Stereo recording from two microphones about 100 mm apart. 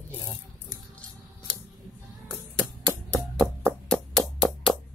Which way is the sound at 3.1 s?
5° left (ahead or behind).